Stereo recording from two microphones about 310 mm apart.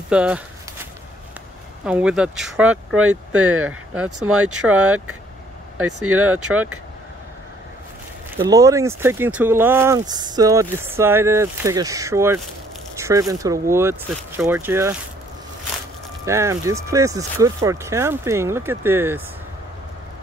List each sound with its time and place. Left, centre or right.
0.1 s speech: centre
1.9 s speech: centre
3.0 s speech: right
4.3 s speech: centre
5.8 s speech: centre
6.0 s speech: right
8.4 s speech: centre
16.3 s speech: centre